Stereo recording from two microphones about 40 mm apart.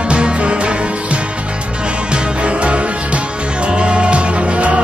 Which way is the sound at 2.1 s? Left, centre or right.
Right.